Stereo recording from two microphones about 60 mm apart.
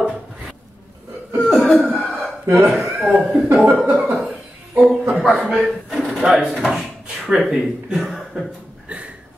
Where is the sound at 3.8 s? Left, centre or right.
Right.